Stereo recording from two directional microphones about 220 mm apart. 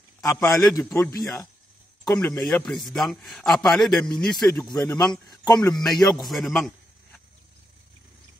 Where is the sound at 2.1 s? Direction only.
Centre (ahead or behind).